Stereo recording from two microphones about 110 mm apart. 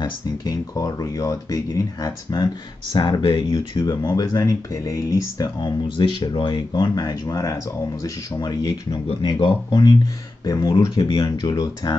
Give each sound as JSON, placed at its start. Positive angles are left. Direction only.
{"t": 0.0, "sound": "speech", "side_deg": 35}
{"t": 2.3, "sound": "speech", "side_deg": 45}
{"t": 3.7, "sound": "speech", "side_deg": 40}
{"t": 4.0, "sound": "speech", "side_deg": 30}
{"t": 7.0, "sound": "speech", "side_deg": 30}
{"t": 10.4, "sound": "speech", "side_deg": 30}